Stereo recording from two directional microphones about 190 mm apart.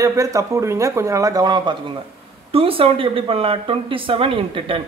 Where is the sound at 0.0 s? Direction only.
15° right (ahead or behind).